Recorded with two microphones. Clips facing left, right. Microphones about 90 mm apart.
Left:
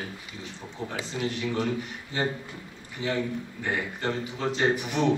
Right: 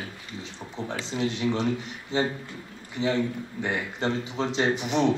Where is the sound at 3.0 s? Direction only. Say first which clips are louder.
Right 3 dB; 20° right (ahead or behind).